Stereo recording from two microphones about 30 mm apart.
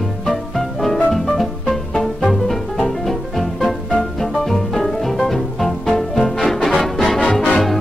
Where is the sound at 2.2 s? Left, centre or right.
Centre.